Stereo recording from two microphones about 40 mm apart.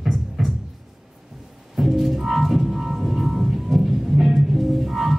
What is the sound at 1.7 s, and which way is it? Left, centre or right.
Music, centre.